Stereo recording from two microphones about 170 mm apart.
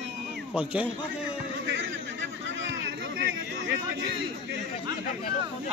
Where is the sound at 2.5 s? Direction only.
90° right.